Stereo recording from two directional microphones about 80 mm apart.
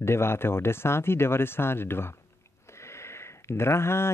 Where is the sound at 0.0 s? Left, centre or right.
Left.